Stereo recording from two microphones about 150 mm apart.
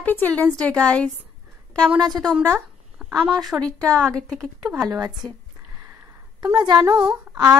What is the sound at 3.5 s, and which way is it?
A woman's voice, 5° left (ahead or behind).